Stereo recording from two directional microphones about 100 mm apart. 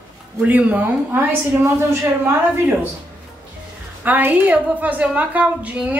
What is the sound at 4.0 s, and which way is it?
A woman's voice, 20° right (ahead or behind).